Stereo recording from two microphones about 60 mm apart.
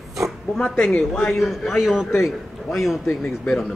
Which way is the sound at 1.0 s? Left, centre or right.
Centre.